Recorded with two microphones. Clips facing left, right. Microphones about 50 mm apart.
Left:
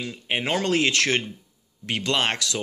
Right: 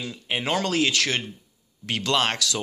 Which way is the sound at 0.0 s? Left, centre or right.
Centre.